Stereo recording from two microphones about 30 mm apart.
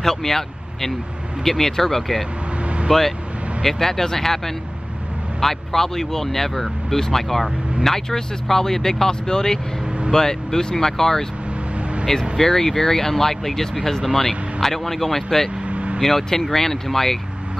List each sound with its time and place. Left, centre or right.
0.0 s speech: centre
2.6 s vehicle: right
2.9 s speech: centre
15.6 s vehicle: right
16.0 s speech: centre